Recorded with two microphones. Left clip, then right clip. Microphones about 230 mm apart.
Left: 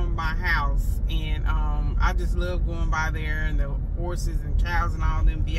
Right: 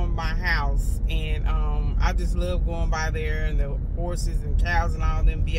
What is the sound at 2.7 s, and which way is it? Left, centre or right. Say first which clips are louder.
Speech: left 1 dB; centre.